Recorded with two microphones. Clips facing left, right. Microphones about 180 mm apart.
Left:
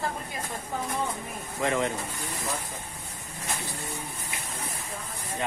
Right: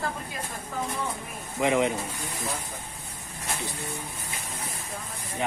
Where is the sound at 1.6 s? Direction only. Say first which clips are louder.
Right 4 dB; 15° right (ahead or behind).